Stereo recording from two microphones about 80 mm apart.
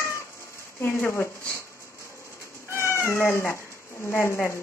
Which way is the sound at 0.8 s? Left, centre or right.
Left.